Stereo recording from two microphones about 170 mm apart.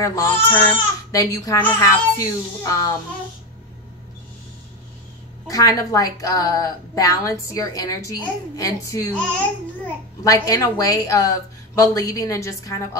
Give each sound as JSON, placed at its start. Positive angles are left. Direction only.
{"t": 0.0, "sound": "a woman's voice", "side_deg": 15}
{"t": 5.5, "sound": "a woman's voice", "side_deg": 20}
{"t": 10.2, "sound": "a woman's voice", "side_deg": 20}